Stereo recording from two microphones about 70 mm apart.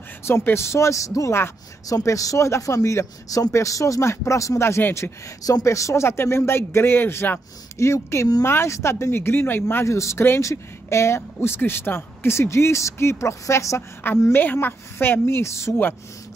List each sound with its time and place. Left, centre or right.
0.2 s a man's voice: left
5.4 s speech: left
9.8 s a man's voice: left
14.0 s a woman's voice: left